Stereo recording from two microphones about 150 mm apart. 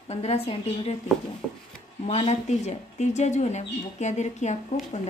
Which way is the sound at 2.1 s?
45° left (ahead or behind).